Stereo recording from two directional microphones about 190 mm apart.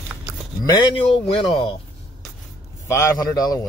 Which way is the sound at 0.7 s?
25° left (ahead or behind).